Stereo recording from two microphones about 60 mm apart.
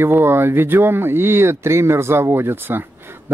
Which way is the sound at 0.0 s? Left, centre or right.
Right.